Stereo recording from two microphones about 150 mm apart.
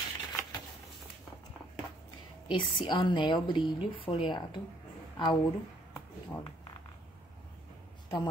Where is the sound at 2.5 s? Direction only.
35° left (ahead or behind).